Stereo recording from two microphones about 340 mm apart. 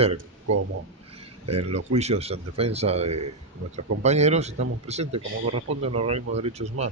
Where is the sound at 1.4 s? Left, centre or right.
Centre.